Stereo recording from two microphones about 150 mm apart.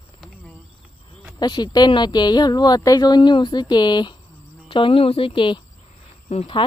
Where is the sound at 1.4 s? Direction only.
30° left (ahead or behind).